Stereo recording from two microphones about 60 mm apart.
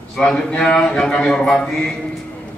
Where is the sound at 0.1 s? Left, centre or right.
Centre.